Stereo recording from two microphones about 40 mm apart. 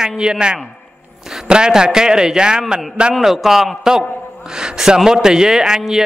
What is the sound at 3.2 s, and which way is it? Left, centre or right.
Speech, centre.